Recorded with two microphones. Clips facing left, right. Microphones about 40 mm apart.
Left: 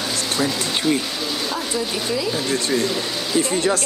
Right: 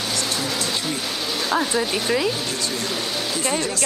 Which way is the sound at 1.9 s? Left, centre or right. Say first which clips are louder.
Right 2 dB; right.